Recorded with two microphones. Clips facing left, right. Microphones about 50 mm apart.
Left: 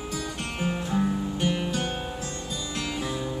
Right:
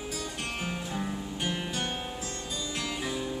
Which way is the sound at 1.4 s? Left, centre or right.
Centre.